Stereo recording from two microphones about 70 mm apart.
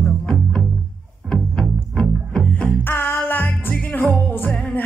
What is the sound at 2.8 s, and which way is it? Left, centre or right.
Music, left.